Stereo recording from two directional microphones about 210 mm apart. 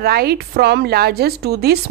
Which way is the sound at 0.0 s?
45° right (ahead or behind).